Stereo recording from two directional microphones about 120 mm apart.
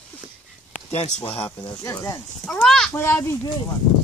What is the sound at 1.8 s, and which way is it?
Speech, 25° left (ahead or behind).